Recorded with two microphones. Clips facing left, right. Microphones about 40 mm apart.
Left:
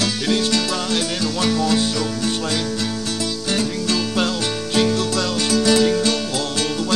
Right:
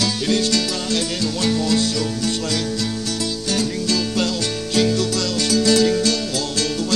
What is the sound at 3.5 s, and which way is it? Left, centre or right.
Music, left.